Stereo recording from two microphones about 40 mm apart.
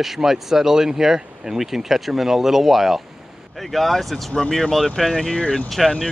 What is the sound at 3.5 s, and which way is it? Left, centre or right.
Speech, centre.